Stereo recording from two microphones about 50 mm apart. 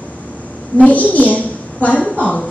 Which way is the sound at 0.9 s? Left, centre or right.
Left.